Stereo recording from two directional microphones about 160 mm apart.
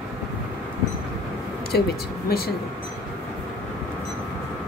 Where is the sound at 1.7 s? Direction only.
90° left.